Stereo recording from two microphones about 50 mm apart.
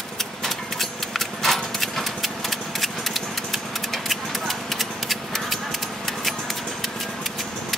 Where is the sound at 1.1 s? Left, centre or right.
Centre.